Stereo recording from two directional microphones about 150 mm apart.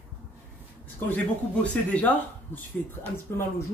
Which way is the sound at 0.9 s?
10° left (ahead or behind).